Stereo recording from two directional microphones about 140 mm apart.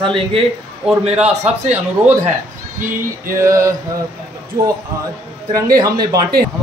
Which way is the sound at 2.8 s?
70° right (ahead or behind).